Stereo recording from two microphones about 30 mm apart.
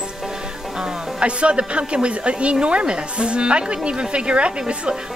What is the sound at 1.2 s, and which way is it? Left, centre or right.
A woman's voice, right.